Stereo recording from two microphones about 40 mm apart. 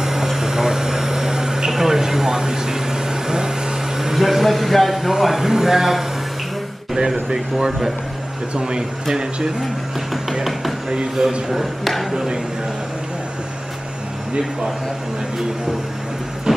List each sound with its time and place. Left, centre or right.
0.0 s air conditioning: centre
4.0 s speech: centre
7.0 s speech: centre
8.5 s speech: right
11.2 s speech: centre
11.8 s speech: centre
16.5 s vehicle: centre